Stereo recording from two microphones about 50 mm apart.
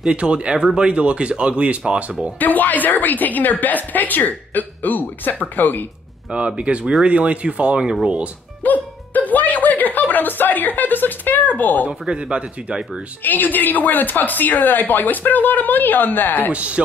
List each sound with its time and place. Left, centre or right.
0.0 s speech: right
2.3 s speech: left
6.3 s speech: right
8.6 s music: left
11.9 s speech: centre
13.2 s speech: left
16.5 s speech: right